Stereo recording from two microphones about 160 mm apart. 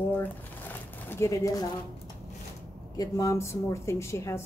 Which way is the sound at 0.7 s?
15° left (ahead or behind).